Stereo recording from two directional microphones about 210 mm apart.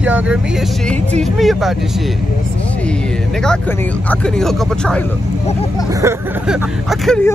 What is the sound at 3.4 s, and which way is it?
Speech, 5° left (ahead or behind).